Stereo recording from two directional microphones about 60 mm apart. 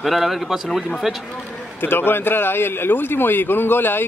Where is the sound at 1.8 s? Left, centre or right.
Left.